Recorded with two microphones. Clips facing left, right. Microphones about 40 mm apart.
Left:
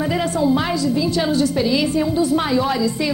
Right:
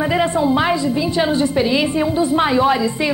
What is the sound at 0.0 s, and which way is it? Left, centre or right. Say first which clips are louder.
A woman's voice: right 2 dB; right.